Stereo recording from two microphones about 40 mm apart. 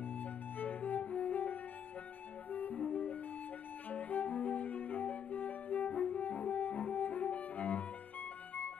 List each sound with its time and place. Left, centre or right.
0.2 s music: left